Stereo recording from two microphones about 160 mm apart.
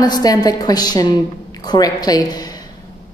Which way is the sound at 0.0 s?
25° left (ahead or behind).